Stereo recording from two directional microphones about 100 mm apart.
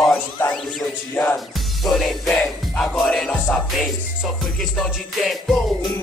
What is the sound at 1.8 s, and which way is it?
Music, centre (ahead or behind).